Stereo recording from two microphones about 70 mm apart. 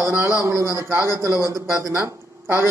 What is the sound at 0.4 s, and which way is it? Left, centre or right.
A man's voice, right.